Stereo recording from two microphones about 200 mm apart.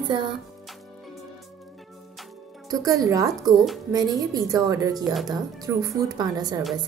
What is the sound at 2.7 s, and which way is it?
Speech, 20° right (ahead or behind).